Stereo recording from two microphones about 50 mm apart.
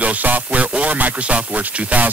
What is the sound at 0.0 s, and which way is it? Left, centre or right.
Speech, right.